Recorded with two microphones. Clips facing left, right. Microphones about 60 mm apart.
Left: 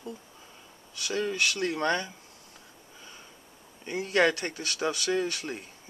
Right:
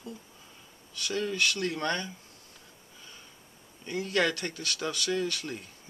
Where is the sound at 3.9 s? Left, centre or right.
Left.